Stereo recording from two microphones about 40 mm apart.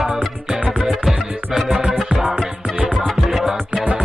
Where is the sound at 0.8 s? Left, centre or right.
Centre.